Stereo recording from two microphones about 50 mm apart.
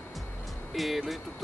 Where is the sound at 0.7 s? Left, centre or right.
Centre.